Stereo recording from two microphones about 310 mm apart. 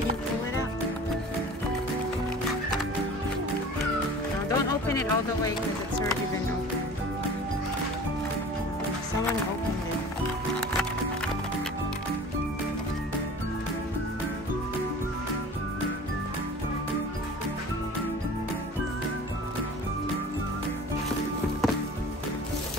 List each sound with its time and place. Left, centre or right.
4.5 s music: centre